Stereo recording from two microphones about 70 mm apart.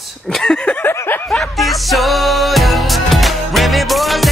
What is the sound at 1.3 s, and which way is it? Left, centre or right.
Music, centre.